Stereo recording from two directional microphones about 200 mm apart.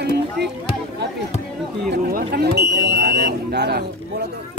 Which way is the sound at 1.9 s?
50° right (ahead or behind).